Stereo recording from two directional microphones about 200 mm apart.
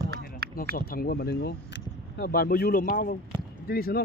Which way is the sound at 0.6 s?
45° left (ahead or behind).